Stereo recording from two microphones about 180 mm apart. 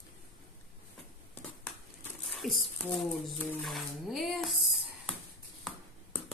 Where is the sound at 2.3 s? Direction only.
Centre (ahead or behind).